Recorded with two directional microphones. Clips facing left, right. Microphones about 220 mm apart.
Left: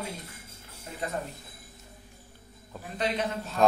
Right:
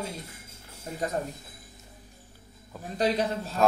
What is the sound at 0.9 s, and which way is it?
Speech, 40° right (ahead or behind).